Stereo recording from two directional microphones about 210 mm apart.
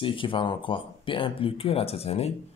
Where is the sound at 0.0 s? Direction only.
25° left (ahead or behind).